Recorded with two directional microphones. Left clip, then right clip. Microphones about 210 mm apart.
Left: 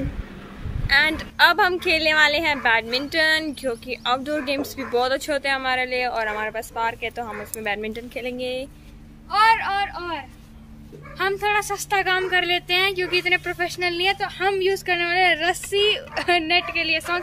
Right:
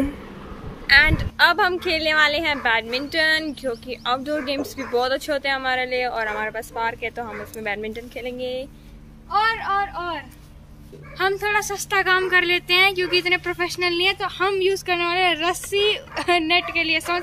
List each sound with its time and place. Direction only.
0.8 s a woman's voice: 5° left (ahead or behind)
9.3 s speech: 35° left (ahead or behind)
11.1 s a woman's voice: centre (ahead or behind)
12.0 s speech: 20° right (ahead or behind)